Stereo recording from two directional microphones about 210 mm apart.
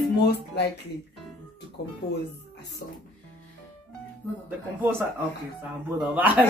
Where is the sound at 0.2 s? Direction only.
50° left (ahead or behind).